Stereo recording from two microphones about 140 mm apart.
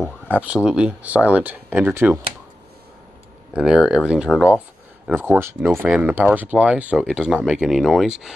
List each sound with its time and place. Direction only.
0.0 s speech: 10° right (ahead or behind)
3.5 s speech: 5° right (ahead or behind)
5.1 s speech: 15° right (ahead or behind)